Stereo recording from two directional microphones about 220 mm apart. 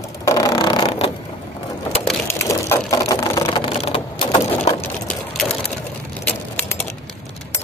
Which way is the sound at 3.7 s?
25° left (ahead or behind).